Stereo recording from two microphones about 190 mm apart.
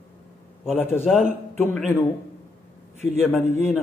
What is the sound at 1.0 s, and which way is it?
Speech, centre (ahead or behind).